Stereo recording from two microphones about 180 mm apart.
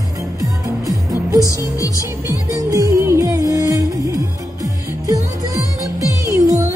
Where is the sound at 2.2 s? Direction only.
20° right (ahead or behind).